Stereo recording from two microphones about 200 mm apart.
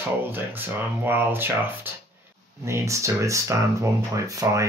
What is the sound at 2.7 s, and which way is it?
Speech, 15° right (ahead or behind).